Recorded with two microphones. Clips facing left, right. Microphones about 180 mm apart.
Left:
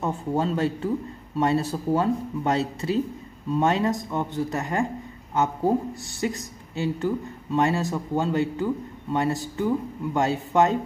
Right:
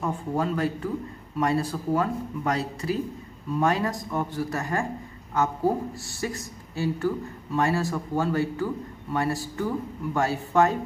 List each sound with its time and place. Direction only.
0.0 s a man's voice: 25° left (ahead or behind)